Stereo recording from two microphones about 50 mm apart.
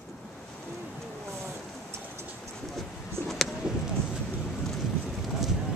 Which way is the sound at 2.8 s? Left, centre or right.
Centre.